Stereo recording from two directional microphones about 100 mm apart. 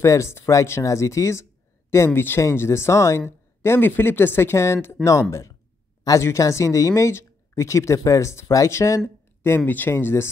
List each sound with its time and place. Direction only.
0.0 s speech: 30° left (ahead or behind)
5.0 s speech: 5° left (ahead or behind)
6.0 s speech: 30° left (ahead or behind)